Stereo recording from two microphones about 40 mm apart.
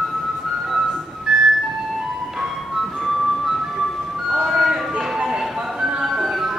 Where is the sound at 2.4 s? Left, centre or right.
Centre.